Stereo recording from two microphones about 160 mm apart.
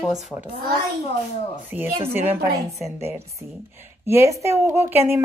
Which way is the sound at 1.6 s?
10° right (ahead or behind).